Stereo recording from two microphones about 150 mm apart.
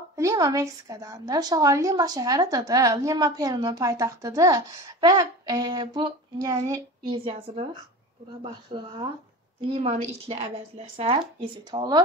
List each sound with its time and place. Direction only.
0.1 s a woman's voice: 20° right (ahead or behind)
7.1 s a woman's voice: 40° right (ahead or behind)
11.7 s a woman's voice: 25° right (ahead or behind)